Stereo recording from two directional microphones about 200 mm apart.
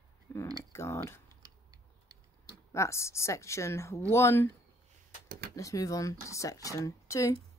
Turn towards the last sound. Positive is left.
turn(degrees=15)  # may be behind; listen again after turning